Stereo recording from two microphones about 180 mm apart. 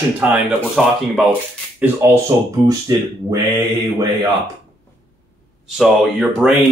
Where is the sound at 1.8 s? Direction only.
15° right (ahead or behind).